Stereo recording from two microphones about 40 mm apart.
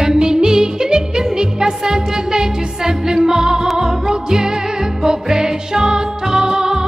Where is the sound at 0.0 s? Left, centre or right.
Centre.